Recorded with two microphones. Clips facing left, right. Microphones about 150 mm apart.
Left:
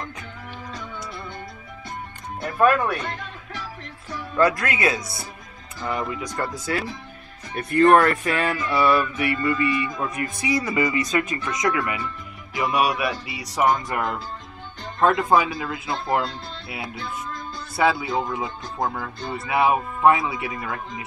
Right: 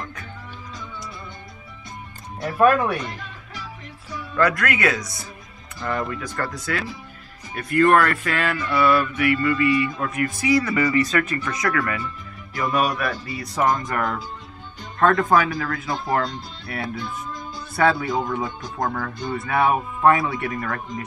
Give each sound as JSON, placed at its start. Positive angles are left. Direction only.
{"t": 2.4, "sound": "speech", "side_deg": -5}
{"t": 4.4, "sound": "speech", "side_deg": 25}
{"t": 5.8, "sound": "speech", "side_deg": 10}
{"t": 15.9, "sound": "speech", "side_deg": 0}
{"t": 17.7, "sound": "speech", "side_deg": 5}